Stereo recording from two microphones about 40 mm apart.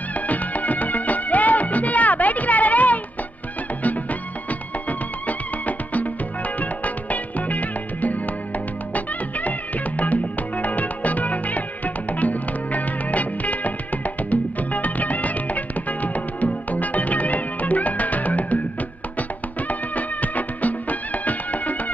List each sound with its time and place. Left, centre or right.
0.1 s music: left
19.7 s music: left